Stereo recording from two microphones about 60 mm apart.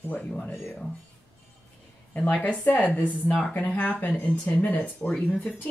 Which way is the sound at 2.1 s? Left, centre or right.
Left.